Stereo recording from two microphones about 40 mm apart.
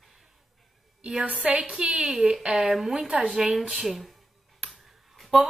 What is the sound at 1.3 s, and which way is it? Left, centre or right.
Speech, right.